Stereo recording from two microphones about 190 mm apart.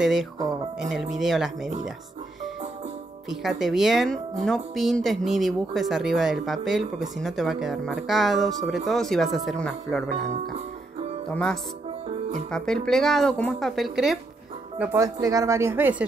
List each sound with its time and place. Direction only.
0.0 s speech: 5° right (ahead or behind)
3.3 s speech: centre (ahead or behind)
10.2 s speech: 40° right (ahead or behind)
11.2 s speech: 5° left (ahead or behind)
14.8 s speech: 15° right (ahead or behind)